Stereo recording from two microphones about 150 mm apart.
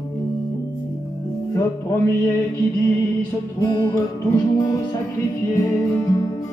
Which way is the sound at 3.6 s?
20° left (ahead or behind).